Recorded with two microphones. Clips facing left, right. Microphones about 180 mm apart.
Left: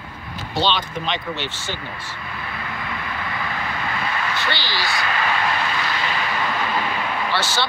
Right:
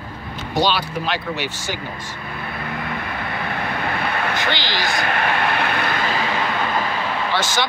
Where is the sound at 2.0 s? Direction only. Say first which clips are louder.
Right 2 dB; 50° right (ahead or behind).